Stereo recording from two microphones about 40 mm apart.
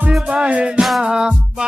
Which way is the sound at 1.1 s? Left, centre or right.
Centre.